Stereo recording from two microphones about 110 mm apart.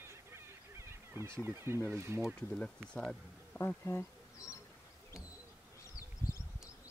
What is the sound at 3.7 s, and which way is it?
Speech, 20° left (ahead or behind).